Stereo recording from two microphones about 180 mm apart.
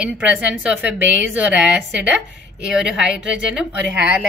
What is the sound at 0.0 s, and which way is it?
A woman's voice, 5° right (ahead or behind).